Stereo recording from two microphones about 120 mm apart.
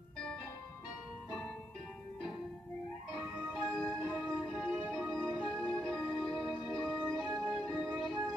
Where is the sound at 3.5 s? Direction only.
5° left (ahead or behind).